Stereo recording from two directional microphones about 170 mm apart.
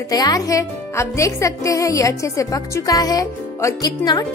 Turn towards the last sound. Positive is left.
turn(degrees=25)  # may be behind; listen again after turning